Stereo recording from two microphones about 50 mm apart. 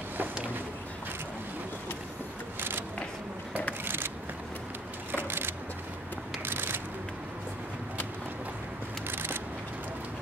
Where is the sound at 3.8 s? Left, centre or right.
Right.